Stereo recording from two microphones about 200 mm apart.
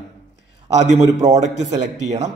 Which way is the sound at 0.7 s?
35° right (ahead or behind).